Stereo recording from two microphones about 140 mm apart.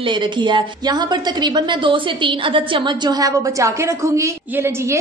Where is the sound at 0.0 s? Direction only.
35° right (ahead or behind).